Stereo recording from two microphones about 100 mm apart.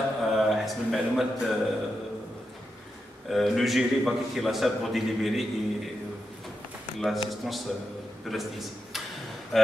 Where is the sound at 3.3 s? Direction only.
Centre (ahead or behind).